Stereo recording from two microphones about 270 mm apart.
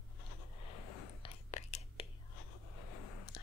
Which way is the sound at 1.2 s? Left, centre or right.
Left.